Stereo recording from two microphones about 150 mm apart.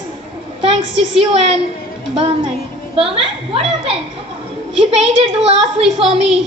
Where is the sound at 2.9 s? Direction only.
40° right (ahead or behind).